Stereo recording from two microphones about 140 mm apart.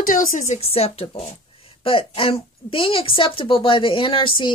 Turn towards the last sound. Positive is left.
turn(degrees=40)  # may be behind; listen again after turning